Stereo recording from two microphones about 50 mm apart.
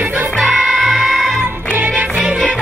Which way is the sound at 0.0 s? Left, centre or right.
Right.